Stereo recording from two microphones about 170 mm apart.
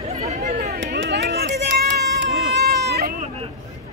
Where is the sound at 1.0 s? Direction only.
85° right.